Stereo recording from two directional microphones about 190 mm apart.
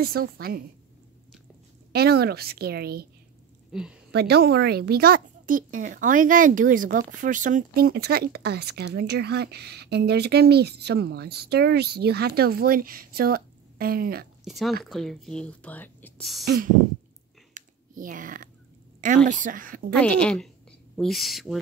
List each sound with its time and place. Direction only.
0.0 s a woman's voice: 55° right (ahead or behind)
1.9 s speech: 55° right (ahead or behind)
3.7 s speech: 5° right (ahead or behind)
4.1 s speech: 60° right (ahead or behind)
14.4 s speech: centre (ahead or behind)
16.4 s a woman's voice: 50° right (ahead or behind)
17.6 s typing: 45° right (ahead or behind)
19.0 s a woman's voice: 40° right (ahead or behind)
20.0 s speech: 5° left (ahead or behind)